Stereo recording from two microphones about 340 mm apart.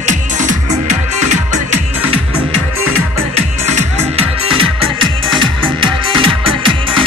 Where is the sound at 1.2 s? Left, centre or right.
Centre.